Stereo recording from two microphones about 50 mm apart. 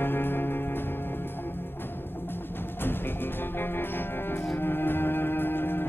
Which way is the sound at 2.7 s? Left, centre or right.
Left.